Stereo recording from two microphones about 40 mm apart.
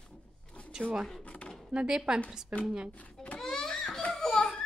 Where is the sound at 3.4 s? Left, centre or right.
Centre.